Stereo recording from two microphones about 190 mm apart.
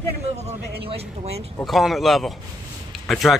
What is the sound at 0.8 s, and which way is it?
Speech, 30° right (ahead or behind).